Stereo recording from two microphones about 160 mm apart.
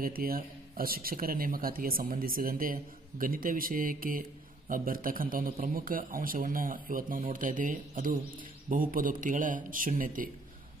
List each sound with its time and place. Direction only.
0.0 s a man's voice: 65° right (ahead or behind)